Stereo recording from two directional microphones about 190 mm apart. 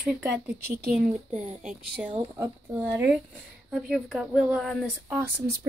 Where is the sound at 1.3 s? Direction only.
40° right (ahead or behind).